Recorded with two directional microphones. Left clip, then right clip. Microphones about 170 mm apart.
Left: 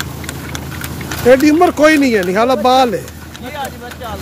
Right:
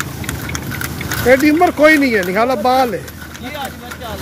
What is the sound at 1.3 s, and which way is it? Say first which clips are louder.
Speech: left 2 dB; 40° left (ahead or behind).